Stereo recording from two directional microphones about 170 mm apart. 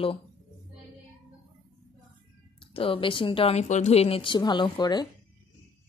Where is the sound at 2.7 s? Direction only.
35° left (ahead or behind).